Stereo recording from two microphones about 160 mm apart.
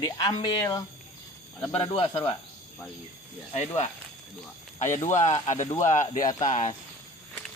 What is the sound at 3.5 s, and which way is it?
Speech, 40° left (ahead or behind).